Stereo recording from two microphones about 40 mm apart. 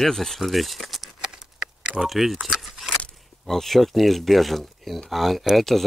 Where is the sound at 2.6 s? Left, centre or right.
Centre.